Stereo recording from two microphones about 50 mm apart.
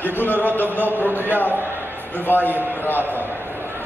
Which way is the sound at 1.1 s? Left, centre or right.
Right.